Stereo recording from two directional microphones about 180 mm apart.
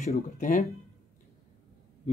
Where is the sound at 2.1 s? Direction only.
40° left (ahead or behind).